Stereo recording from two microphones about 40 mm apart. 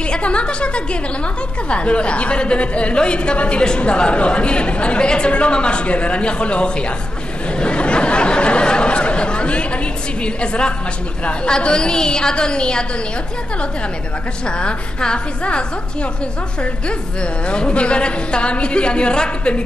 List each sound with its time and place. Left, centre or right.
0.0 s a woman's voice: left
7.5 s a sound: left
10.2 s a woman's voice: left
14.6 s a woman's voice: left
17.2 s a woman's voice: left